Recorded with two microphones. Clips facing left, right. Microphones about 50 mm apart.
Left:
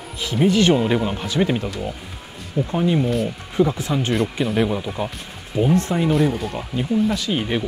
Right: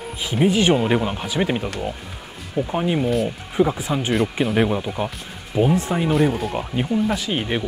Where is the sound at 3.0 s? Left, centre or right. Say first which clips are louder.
Right 1 dB; centre.